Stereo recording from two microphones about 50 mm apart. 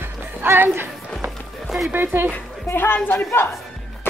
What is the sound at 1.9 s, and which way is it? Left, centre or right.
Speech, right.